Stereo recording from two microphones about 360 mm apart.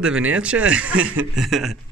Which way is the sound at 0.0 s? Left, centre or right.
Centre.